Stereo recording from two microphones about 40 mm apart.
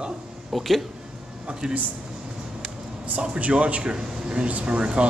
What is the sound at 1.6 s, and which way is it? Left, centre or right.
Speech, right.